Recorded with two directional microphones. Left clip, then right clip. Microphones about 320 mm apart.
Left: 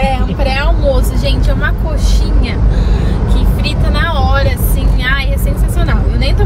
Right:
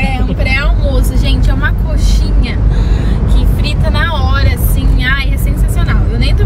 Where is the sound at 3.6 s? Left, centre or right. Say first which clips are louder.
Right 1 dB; centre.